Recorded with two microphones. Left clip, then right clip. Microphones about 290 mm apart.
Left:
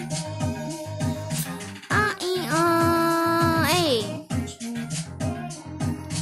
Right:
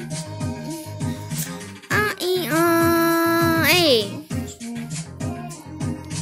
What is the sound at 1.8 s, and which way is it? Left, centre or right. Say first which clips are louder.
Music: right 2 dB; centre.